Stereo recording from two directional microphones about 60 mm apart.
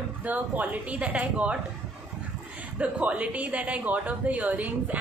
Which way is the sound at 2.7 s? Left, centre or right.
Right.